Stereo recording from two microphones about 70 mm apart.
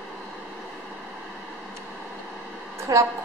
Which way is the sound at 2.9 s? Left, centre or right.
Right.